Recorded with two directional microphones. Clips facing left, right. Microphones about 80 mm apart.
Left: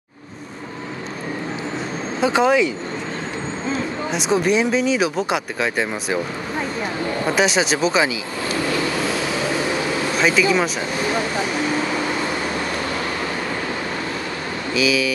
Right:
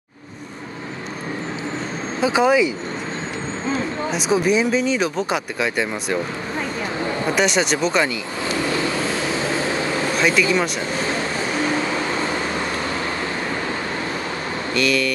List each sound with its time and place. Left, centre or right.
2.2 s speech: centre
4.1 s speech: centre
7.3 s speech: centre
8.7 s vehicle: right
10.2 s speech: centre
14.7 s speech: centre